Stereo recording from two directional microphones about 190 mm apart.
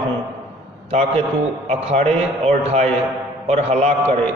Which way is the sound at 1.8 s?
35° right (ahead or behind).